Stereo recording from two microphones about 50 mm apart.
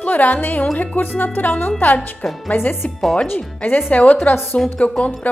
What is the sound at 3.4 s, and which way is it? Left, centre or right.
Speech, left.